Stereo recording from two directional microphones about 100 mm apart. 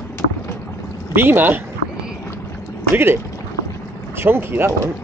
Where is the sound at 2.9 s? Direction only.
25° right (ahead or behind).